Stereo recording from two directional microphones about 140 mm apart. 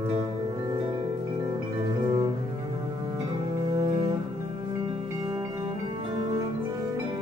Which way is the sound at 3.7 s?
30° right (ahead or behind).